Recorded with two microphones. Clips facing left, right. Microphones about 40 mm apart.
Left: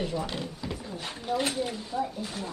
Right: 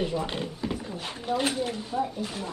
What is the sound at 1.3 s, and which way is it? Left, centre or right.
A child's voice, centre.